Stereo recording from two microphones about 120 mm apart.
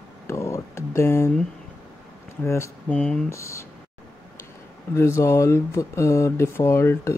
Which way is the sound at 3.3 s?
25° left (ahead or behind).